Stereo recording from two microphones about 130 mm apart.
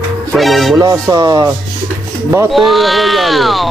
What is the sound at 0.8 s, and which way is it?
Speech, 25° right (ahead or behind).